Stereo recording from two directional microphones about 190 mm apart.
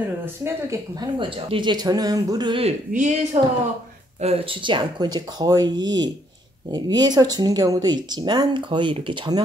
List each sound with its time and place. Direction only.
0.2 s speech: 15° right (ahead or behind)
2.9 s a woman's voice: 40° right (ahead or behind)
4.2 s speech: 30° right (ahead or behind)